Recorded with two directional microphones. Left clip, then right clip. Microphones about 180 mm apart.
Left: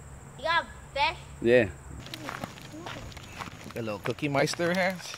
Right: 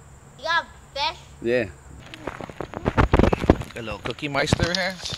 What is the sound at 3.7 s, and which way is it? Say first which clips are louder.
Speech: right 2 dB; 15° left (ahead or behind).